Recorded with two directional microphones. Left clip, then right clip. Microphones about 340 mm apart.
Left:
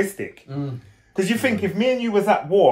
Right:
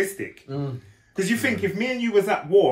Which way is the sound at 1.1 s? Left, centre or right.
Centre.